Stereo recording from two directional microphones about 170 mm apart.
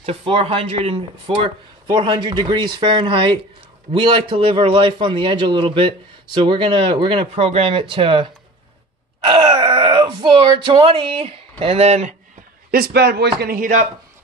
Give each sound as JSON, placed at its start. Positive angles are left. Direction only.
{"t": 0.0, "sound": "speech", "side_deg": -35}
{"t": 1.9, "sound": "a man's voice", "side_deg": -25}
{"t": 12.7, "sound": "a man's voice", "side_deg": -65}
{"t": 13.4, "sound": "a man's voice", "side_deg": -60}